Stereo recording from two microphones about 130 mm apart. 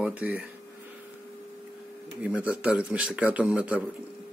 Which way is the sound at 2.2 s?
10° right (ahead or behind).